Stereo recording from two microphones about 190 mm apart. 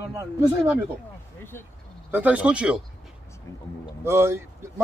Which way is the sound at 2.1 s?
10° right (ahead or behind).